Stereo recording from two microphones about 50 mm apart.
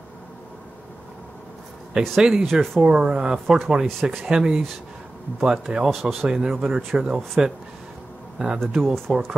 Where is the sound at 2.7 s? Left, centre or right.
Centre.